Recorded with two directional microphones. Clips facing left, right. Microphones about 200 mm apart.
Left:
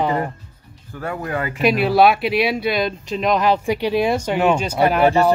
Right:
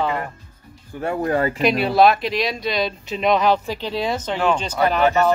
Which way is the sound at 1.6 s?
5° left (ahead or behind).